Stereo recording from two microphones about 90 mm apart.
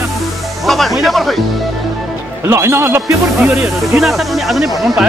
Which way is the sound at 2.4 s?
30° right (ahead or behind).